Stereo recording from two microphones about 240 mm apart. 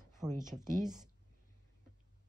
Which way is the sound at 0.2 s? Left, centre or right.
Centre.